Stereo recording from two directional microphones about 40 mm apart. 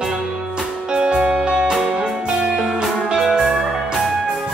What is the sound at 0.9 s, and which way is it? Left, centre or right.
Music, right.